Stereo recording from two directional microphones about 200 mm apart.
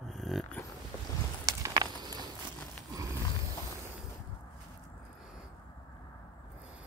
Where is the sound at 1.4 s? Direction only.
20° right (ahead or behind).